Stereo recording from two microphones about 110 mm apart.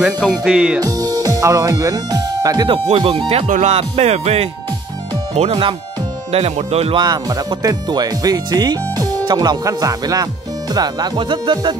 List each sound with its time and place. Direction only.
0.0 s speech: 5° right (ahead or behind)
0.7 s speech: 35° right (ahead or behind)
2.7 s speech: 55° right (ahead or behind); by 4.5 s 70° right (ahead or behind)
5.5 s speech: 50° right (ahead or behind)
6.3 s speech: 70° right (ahead or behind)
7.0 s speech: 35° right (ahead or behind)